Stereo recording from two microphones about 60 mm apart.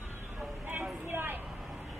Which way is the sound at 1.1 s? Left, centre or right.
Right.